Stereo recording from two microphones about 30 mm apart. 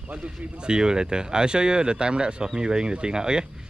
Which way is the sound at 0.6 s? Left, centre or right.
Right.